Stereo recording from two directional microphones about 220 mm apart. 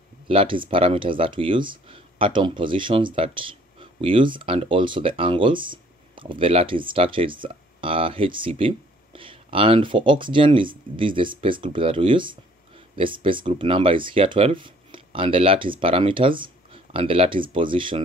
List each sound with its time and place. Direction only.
0.3 s speech: 25° right (ahead or behind)